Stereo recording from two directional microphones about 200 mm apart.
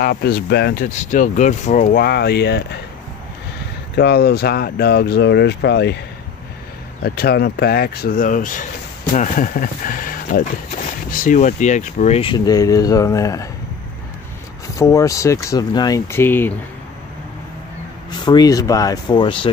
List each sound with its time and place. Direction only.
0.0 s speech: 50° left (ahead or behind)
0.8 s speech: 40° left (ahead or behind); by 2.6 s 55° left (ahead or behind)
3.9 s speech: 50° left (ahead or behind)
7.0 s speech: 50° left (ahead or behind); by 13.5 s 15° left (ahead or behind)
14.8 s speech: 15° left (ahead or behind)
18.2 s speech: 20° left (ahead or behind)